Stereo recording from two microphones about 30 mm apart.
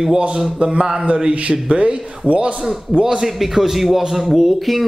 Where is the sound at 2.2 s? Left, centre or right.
Right.